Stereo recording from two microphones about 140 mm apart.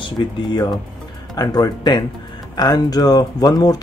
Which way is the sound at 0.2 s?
30° left (ahead or behind).